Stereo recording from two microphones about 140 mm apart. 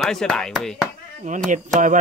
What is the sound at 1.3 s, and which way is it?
Speech, 60° right (ahead or behind).